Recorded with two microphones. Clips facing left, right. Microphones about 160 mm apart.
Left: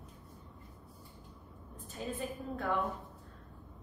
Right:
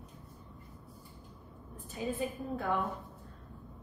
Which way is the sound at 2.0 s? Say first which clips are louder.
Right 4 dB; 5° right (ahead or behind).